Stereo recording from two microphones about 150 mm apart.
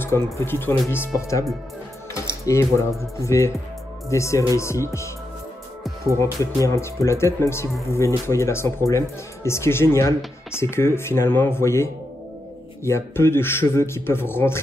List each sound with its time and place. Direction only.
0.0 s speech: 15° left (ahead or behind)
6.1 s speech: 20° left (ahead or behind)